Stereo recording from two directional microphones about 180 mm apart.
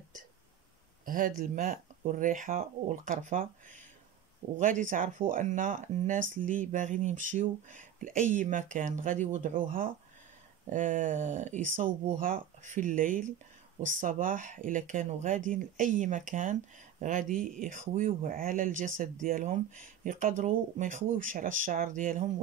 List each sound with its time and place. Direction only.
1.0 s speech: 50° right (ahead or behind)